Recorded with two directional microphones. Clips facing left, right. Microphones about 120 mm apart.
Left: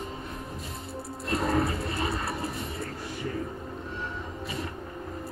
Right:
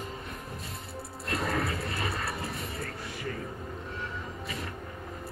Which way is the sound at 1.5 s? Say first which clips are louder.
Left 6 dB; 30° left (ahead or behind).